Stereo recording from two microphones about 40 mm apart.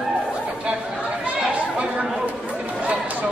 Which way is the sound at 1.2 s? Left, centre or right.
Right.